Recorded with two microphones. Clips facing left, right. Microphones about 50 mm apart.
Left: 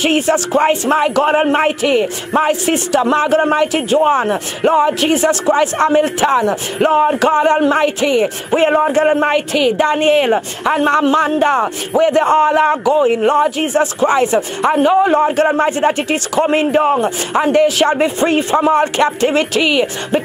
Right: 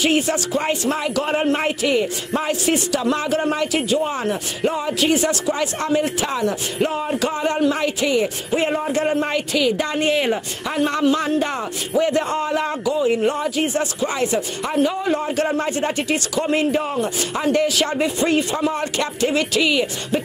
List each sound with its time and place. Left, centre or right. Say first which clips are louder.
0.0 s speech: left 5 dB; left
13.1 s speech: left 7 dB; left